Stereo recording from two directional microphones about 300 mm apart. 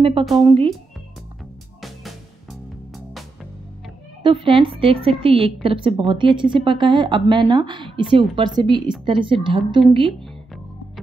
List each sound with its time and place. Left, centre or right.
0.2 s a woman's voice: centre
4.2 s a woman's voice: centre